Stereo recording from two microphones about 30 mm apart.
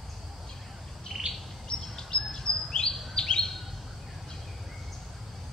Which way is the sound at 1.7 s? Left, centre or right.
Left.